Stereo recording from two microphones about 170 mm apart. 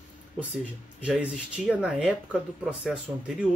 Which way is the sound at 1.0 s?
5° right (ahead or behind).